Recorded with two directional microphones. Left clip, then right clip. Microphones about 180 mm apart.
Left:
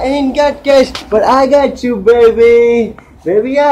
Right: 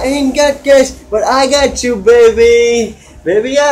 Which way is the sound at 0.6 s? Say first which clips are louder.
Right 1 dB; 25° left (ahead or behind).